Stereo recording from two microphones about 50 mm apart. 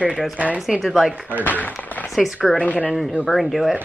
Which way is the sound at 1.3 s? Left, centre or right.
Left.